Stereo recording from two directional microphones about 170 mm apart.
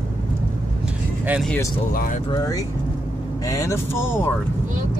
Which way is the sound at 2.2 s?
20° left (ahead or behind).